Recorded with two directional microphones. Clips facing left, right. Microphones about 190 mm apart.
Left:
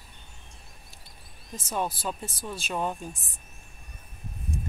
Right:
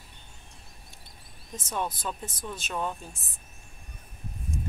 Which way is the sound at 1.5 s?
10° left (ahead or behind).